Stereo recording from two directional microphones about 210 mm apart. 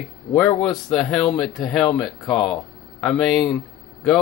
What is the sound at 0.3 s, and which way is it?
Speech, 5° left (ahead or behind).